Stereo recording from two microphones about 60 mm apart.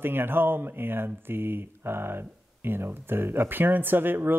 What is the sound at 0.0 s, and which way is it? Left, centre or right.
Speech, right.